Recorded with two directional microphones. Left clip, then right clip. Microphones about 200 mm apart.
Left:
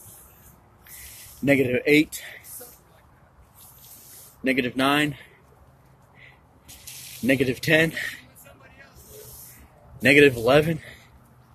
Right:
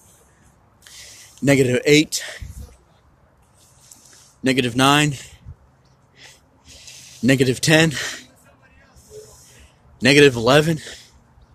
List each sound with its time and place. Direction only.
1.4 s a man's voice: 40° right (ahead or behind)
4.4 s a man's voice: 40° right (ahead or behind)
7.2 s speech: 40° right (ahead or behind)
10.0 s a man's voice: 40° right (ahead or behind)